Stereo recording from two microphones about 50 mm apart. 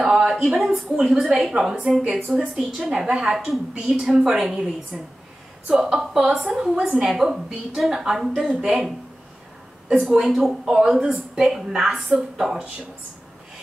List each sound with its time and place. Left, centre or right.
0.0 s a sound: centre
0.3 s a woman's voice: centre
9.8 s a woman's voice: centre
10.2 s a woman's voice: centre